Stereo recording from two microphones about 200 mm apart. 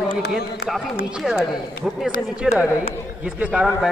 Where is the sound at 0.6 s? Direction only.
50° left (ahead or behind).